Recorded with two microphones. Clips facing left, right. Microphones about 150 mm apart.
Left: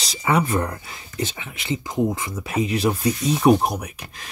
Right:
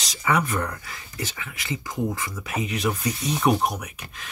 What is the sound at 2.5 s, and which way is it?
Speech, 30° left (ahead or behind).